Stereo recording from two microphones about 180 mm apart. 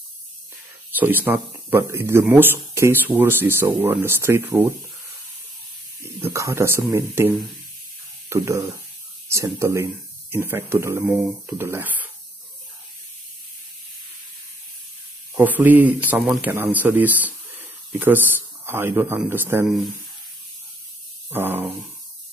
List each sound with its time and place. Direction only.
0.9 s speech: 10° right (ahead or behind)
6.1 s speech: 15° right (ahead or behind)
15.3 s speech: 10° right (ahead or behind)
21.3 s speech: 10° right (ahead or behind)